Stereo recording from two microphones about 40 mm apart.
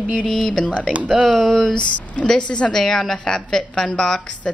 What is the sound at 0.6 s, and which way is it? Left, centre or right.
Speech, left.